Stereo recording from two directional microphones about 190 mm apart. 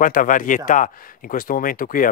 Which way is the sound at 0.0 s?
45° left (ahead or behind).